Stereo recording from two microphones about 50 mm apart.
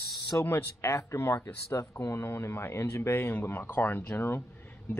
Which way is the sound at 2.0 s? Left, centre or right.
Left.